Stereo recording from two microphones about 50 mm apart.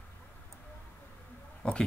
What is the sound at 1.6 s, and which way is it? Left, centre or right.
Speech, left.